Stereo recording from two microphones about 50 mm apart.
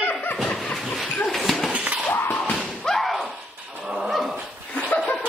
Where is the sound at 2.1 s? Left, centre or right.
Left.